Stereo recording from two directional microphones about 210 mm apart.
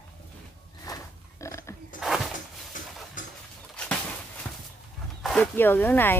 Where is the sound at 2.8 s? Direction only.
40° left (ahead or behind).